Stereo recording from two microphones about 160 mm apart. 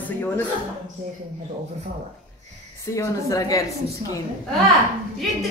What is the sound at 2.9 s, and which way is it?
Speech, 20° left (ahead or behind).